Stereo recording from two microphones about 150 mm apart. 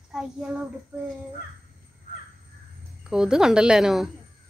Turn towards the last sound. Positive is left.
turn(degrees=-5)  # may be behind; listen again after turning